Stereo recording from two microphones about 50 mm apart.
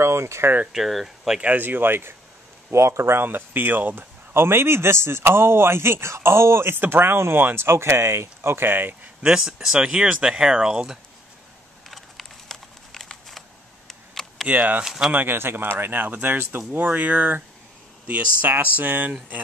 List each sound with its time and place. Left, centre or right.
0.0 s speech: right
0.7 s speech: centre
1.4 s speech: right
2.7 s speech: right
4.3 s a man's voice: right
9.2 s speech: centre
11.9 s a sound: centre
13.8 s camera: centre
14.5 s speech: right
15.1 s speech: right